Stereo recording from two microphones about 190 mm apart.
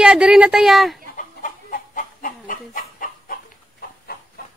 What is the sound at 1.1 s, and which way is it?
Chicken, 45° left (ahead or behind).